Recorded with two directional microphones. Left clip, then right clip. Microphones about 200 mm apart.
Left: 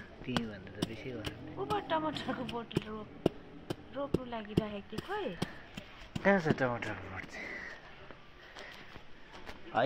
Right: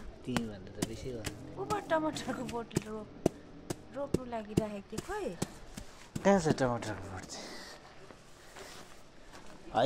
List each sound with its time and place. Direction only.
0.3 s a sound: 15° right (ahead or behind)
1.6 s speech: 25° right (ahead or behind)
6.2 s speech: 30° right (ahead or behind)